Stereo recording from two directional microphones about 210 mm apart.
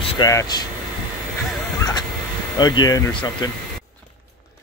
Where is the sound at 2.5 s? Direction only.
20° left (ahead or behind).